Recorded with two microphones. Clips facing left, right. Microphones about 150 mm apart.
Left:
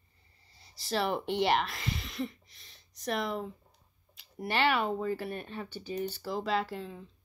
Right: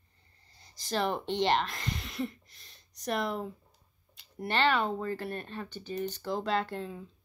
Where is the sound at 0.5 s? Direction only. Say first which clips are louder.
Even; centre (ahead or behind).